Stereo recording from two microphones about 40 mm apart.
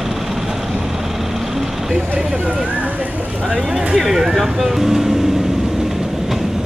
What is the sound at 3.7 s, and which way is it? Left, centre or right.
Speech, centre.